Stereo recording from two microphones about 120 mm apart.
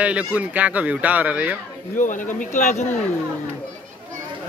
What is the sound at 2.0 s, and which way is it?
Speech, 90° left.